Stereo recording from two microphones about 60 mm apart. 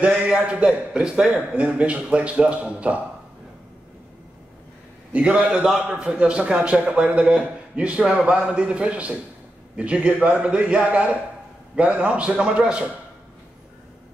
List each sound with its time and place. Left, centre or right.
0.5 s a man's voice: centre
5.1 s a man's voice: centre